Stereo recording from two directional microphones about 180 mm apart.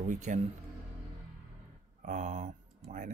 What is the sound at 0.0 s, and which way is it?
Speech, 45° right (ahead or behind).